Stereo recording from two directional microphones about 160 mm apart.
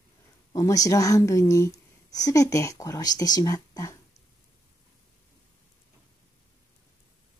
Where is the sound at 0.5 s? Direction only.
20° left (ahead or behind).